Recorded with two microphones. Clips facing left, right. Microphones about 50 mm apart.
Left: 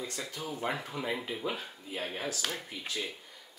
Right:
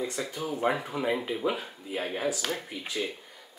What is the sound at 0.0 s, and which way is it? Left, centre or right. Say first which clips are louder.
Speech: right 6 dB; centre.